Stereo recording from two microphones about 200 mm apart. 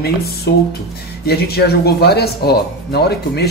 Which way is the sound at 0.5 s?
55° left (ahead or behind).